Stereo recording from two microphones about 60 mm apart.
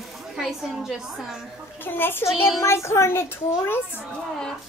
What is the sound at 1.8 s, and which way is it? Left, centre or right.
Speech, left.